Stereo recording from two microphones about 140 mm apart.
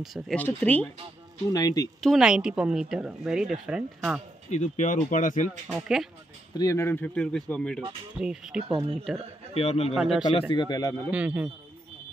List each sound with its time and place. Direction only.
0.0 s a woman's voice: centre (ahead or behind)
0.4 s speech: 10° left (ahead or behind)
1.5 s a man's voice: 25° left (ahead or behind)
2.0 s a woman's voice: centre (ahead or behind)
4.5 s speech: 60° left (ahead or behind)
5.8 s a woman's voice: 5° right (ahead or behind)
6.5 s speech: 25° left (ahead or behind); by 7.8 s 5° left (ahead or behind)
8.1 s a woman's voice: 5° right (ahead or behind)
9.5 s a man's voice: 45° left (ahead or behind)
9.9 s a woman's voice: centre (ahead or behind)
10.5 s a man's voice: 30° left (ahead or behind)
11.1 s speech: 10° right (ahead or behind)